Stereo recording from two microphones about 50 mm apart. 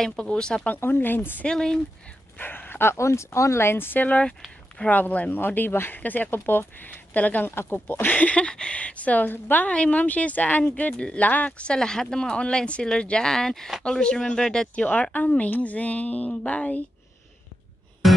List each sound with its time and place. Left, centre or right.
0.2 s a woman's voice: centre
0.7 s speech: left
1.4 s speech: centre
2.3 s speech: left
3.0 s speech: left
3.6 s speech: left
4.0 s a woman's voice: left
5.3 s speech: left
5.9 s speech: left
7.4 s speech: left
7.8 s a woman's voice: left; by 14.9 s centre
14.9 s a woman's voice: left
18.0 s music: centre